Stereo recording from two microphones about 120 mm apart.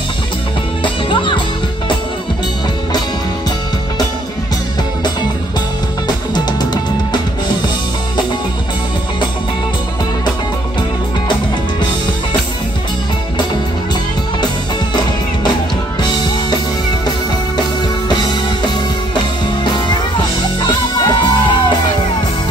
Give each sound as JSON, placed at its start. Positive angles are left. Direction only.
{"t": 1.1, "sound": "music", "side_deg": 40}
{"t": 6.3, "sound": "music", "side_deg": 35}
{"t": 18.0, "sound": "music", "side_deg": 35}
{"t": 21.0, "sound": "music", "side_deg": 40}